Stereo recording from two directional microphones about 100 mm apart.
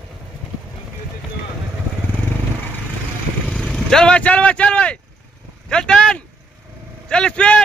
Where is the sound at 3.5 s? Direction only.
Centre (ahead or behind).